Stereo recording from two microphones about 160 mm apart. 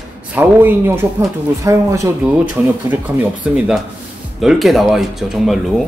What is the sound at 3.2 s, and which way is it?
A man's voice, 5° right (ahead or behind).